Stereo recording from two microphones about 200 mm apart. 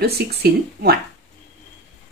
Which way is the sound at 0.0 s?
55° right (ahead or behind).